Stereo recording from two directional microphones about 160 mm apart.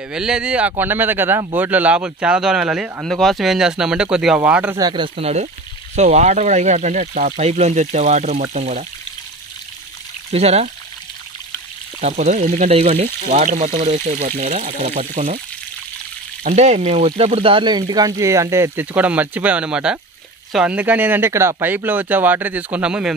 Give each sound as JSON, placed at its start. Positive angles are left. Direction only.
{"t": 0.1, "sound": "speech", "side_deg": -5}
{"t": 4.7, "sound": "speech", "side_deg": -25}
{"t": 10.3, "sound": "speech", "side_deg": -40}
{"t": 12.0, "sound": "speech", "side_deg": -45}
{"t": 16.4, "sound": "speech", "side_deg": -45}